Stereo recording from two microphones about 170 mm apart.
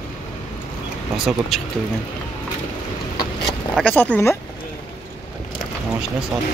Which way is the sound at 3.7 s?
10° left (ahead or behind).